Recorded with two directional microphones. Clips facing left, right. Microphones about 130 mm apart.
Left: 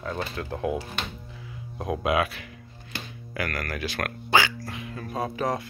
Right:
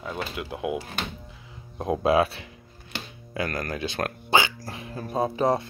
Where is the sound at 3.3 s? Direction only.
25° right (ahead or behind).